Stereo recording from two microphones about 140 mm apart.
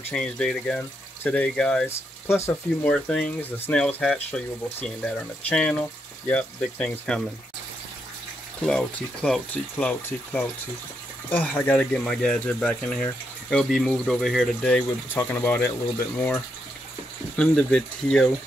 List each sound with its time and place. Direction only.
0.1 s speech: 5° left (ahead or behind)
1.9 s speech: 20° left (ahead or behind)
2.9 s speech: 5° left (ahead or behind)
3.8 s speech: 5° left (ahead or behind)
8.6 s speech: 5° left (ahead or behind)
17.4 s speech: 5° left (ahead or behind)